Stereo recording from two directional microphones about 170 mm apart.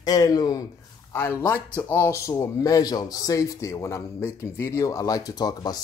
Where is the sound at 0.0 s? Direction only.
25° left (ahead or behind).